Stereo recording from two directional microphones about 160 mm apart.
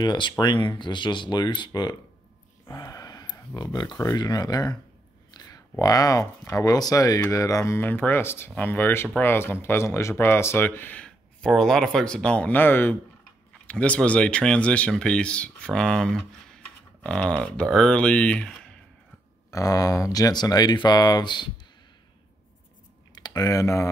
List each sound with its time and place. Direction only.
0.0 s speech: 25° left (ahead or behind); by 18.7 s 5° left (ahead or behind)
19.5 s speech: 20° left (ahead or behind)
23.1 s speech: 25° left (ahead or behind)